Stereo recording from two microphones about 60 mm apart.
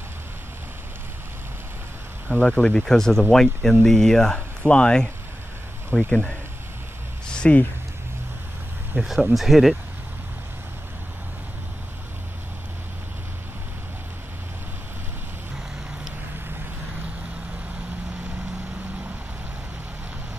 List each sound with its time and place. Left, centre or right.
2.2 s speech: centre
7.2 s a sound: centre
8.9 s speech: centre